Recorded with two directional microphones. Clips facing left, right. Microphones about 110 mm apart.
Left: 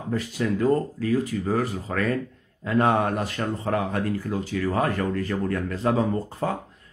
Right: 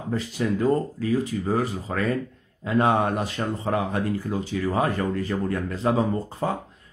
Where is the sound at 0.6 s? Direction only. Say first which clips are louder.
Left 1 dB; 15° right (ahead or behind).